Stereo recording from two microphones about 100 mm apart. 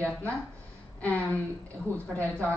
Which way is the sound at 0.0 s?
15° left (ahead or behind).